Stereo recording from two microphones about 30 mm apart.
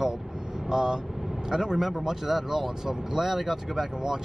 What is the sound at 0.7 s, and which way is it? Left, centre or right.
Speech, centre.